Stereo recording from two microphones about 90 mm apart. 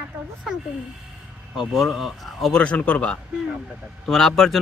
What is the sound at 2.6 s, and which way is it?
Speech, 15° left (ahead or behind).